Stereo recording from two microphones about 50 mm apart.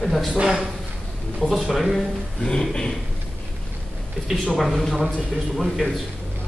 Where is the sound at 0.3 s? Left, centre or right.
Centre.